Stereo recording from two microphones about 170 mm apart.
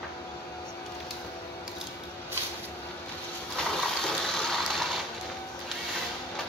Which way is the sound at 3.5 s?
Centre (ahead or behind).